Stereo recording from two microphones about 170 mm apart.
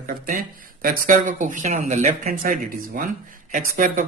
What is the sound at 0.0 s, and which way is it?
A man's voice, 55° right (ahead or behind).